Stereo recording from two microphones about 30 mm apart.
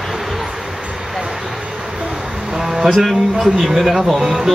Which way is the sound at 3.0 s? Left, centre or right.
Centre.